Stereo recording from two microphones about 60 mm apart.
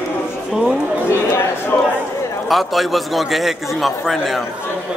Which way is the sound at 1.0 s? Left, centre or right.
Left.